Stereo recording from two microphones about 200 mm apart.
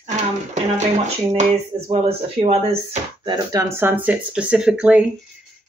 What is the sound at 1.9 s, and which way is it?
Speech, 30° right (ahead or behind).